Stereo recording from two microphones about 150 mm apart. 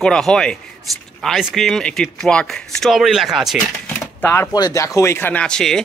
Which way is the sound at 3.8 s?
15° left (ahead or behind).